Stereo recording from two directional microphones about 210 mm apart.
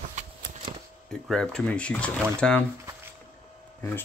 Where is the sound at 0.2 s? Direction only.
35° right (ahead or behind).